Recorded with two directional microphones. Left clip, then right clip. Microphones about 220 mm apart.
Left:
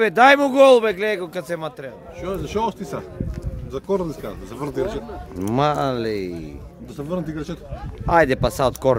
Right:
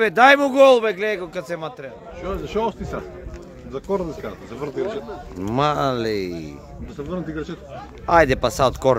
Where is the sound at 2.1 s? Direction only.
45° left (ahead or behind).